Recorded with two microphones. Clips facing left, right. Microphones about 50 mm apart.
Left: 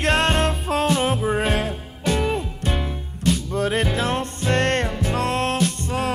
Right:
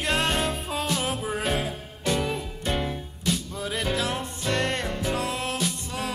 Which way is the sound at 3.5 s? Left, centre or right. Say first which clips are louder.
Left 9 dB; left.